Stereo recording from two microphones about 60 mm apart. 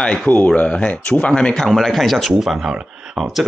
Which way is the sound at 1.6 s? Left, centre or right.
Centre.